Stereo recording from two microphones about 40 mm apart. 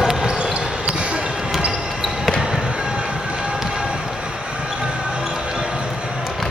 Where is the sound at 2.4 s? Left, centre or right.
Right.